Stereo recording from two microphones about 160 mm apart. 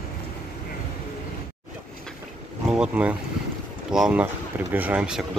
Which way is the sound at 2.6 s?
5° right (ahead or behind).